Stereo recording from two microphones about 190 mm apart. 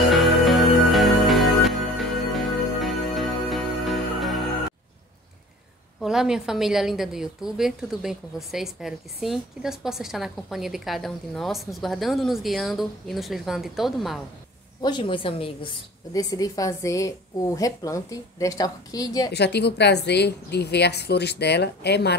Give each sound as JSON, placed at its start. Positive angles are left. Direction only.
{"t": 0.1, "sound": "music", "side_deg": 0}
{"t": 5.9, "sound": "a woman's voice", "side_deg": -5}
{"t": 14.8, "sound": "a woman's voice", "side_deg": 25}
{"t": 19.3, "sound": "a woman's voice", "side_deg": 60}